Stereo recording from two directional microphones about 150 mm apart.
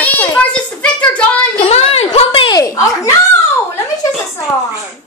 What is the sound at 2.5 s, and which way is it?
Speech, 20° left (ahead or behind).